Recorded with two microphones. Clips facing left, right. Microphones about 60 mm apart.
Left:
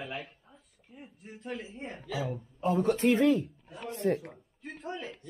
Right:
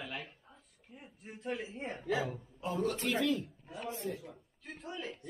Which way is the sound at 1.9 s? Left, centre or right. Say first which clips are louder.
Right 4 dB; right.